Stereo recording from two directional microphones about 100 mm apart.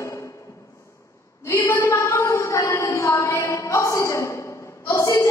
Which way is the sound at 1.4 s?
30° left (ahead or behind).